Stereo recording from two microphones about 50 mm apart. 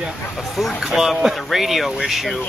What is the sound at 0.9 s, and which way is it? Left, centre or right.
Speech, centre.